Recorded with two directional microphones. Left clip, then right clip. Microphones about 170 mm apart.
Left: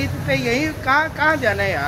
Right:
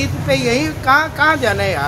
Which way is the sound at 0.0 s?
20° right (ahead or behind).